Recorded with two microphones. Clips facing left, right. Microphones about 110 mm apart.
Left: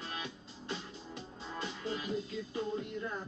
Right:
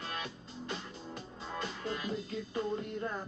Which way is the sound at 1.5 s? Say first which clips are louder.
Right 1 dB; 55° right (ahead or behind).